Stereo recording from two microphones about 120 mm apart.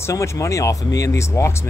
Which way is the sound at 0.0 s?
25° left (ahead or behind).